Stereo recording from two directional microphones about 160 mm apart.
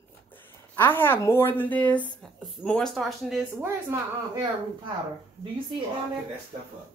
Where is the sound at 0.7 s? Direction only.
15° left (ahead or behind); by 3.4 s centre (ahead or behind).